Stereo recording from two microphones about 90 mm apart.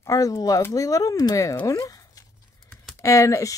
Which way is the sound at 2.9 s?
35° left (ahead or behind).